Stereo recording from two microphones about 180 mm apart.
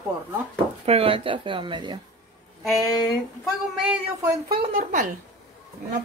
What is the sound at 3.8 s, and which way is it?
Speech, 5° right (ahead or behind).